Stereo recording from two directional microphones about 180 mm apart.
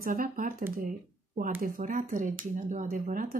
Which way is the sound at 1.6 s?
45° right (ahead or behind).